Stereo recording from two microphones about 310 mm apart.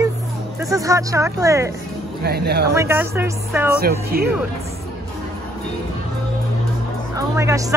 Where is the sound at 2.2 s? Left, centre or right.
Right.